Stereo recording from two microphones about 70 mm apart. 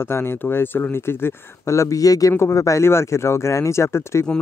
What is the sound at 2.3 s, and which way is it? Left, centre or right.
A man's voice, left.